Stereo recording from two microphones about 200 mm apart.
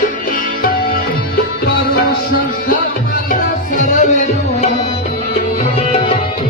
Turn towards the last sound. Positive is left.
turn(degrees=40)  # may be behind; listen again after turning